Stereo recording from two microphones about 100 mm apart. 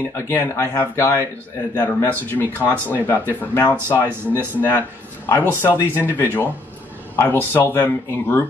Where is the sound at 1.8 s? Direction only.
20° left (ahead or behind).